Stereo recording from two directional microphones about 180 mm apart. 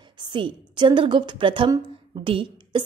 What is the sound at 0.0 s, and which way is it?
A woman's voice, 25° right (ahead or behind).